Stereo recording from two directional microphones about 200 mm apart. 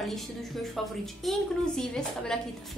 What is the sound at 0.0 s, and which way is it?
A woman's voice, centre (ahead or behind).